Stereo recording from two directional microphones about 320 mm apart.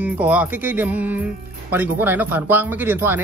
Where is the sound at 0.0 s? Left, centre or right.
Centre.